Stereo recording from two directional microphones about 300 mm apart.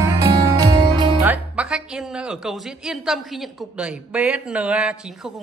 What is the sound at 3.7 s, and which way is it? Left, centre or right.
A man's voice, centre.